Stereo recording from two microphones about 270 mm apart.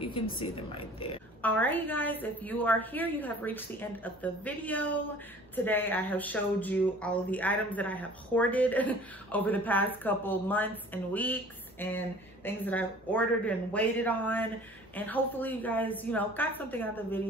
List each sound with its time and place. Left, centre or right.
0.0 s speech: centre
1.4 s speech: centre